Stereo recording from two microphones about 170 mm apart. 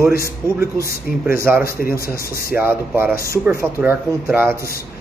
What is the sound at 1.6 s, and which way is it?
Speech, 60° left (ahead or behind).